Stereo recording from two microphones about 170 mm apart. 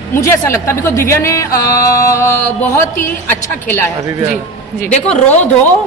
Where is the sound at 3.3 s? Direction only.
10° left (ahead or behind).